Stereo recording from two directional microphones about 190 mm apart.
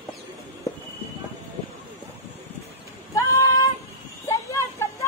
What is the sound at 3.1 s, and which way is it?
Child singing, 15° left (ahead or behind).